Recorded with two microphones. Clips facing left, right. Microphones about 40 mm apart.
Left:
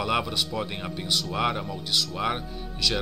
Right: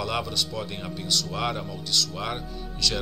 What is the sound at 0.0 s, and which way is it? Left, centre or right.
Speech, centre.